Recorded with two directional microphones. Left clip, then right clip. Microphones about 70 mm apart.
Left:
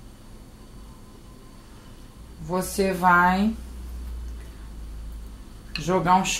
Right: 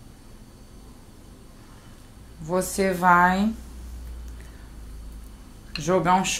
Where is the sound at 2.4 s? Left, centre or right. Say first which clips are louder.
Right 1 dB; right.